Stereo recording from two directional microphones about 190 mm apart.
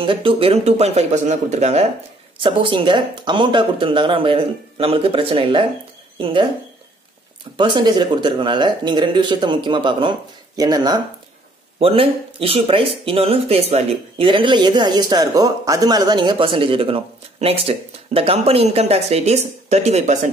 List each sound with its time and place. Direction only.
0.0 s speech: 25° right (ahead or behind)
7.5 s speech: 25° right (ahead or behind)